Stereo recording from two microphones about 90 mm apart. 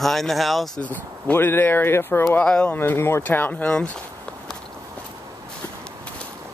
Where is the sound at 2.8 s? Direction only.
25° left (ahead or behind).